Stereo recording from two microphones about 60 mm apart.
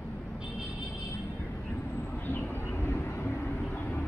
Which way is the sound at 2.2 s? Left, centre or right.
Left.